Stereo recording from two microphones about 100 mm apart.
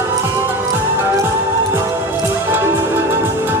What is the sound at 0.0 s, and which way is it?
Music, 20° right (ahead or behind).